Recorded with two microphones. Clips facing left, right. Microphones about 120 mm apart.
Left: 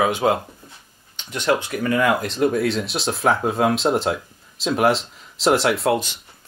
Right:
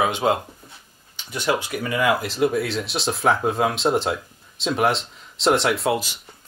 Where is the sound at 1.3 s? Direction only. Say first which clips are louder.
Left 2 dB; 10° right (ahead or behind).